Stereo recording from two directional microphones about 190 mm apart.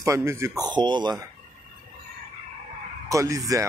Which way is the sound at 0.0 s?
15° right (ahead or behind).